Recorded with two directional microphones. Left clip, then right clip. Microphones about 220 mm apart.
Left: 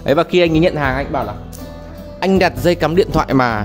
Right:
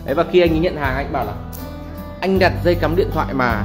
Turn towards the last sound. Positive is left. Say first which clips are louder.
# left 4 dB
turn(degrees=50)  # may be behind; listen again after turning